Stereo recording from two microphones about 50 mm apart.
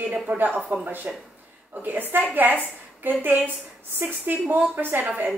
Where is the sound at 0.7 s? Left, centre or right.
Right.